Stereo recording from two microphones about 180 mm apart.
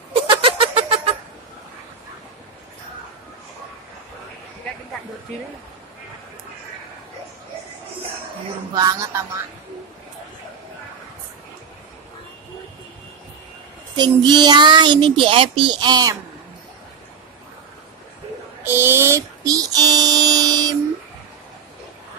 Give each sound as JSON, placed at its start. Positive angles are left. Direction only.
{"t": 0.1, "sound": "goat", "side_deg": -30}
{"t": 8.7, "sound": "a child's voice", "side_deg": -20}
{"t": 13.9, "sound": "a child's voice", "side_deg": -25}
{"t": 18.6, "sound": "a child's voice", "side_deg": -10}